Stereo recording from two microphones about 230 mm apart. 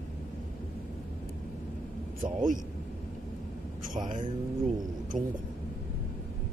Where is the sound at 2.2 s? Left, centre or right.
Right.